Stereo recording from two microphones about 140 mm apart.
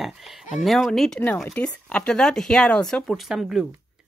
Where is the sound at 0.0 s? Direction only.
Centre (ahead or behind).